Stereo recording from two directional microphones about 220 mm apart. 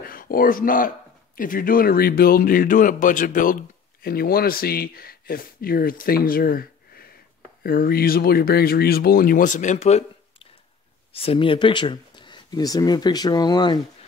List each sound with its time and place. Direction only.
0.0 s speech: 40° left (ahead or behind); by 13.7 s 20° left (ahead or behind)